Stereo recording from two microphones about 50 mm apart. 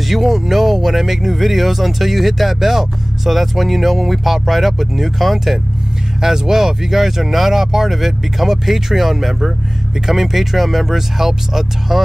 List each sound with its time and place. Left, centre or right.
0.1 s speech: centre